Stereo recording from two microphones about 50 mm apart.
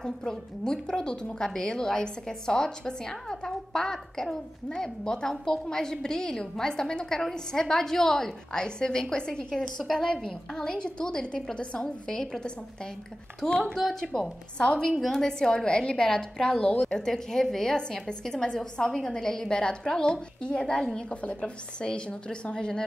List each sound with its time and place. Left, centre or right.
0.0 s a woman's voice: centre
13.9 s a woman's voice: centre